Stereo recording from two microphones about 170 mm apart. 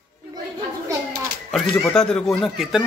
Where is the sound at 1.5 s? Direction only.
5° left (ahead or behind).